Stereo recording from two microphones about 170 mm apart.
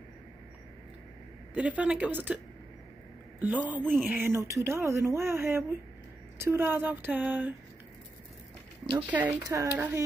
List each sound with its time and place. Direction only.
1.5 s speech: 10° right (ahead or behind)
3.3 s speech: 10° right (ahead or behind)
8.9 s speech: 10° right (ahead or behind)